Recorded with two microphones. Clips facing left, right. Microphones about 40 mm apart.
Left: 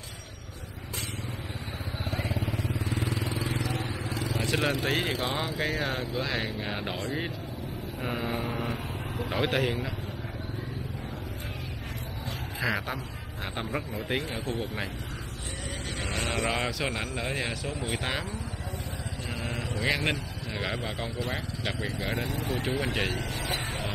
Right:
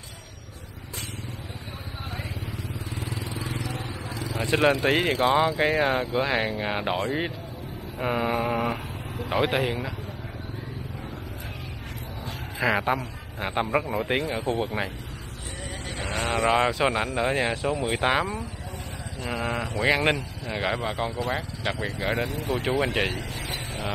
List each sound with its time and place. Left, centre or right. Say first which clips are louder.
2.9 s vehicle: left 3 dB; left
4.5 s speech: right 8 dB; right
9.3 s a man's voice: right 4 dB; centre
12.5 s a man's voice: right 7 dB; right
16.0 s vehicle: right 5 dB; centre
16.7 s speech: right 7 dB; right
19.2 s a sound: right 8 dB; right
20.4 s a man's voice: right 6 dB; centre
21.9 s speech: right 4 dB; right
23.4 s a sound: left 1 dB; left